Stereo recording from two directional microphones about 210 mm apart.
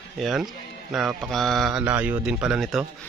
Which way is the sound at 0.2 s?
Centre (ahead or behind).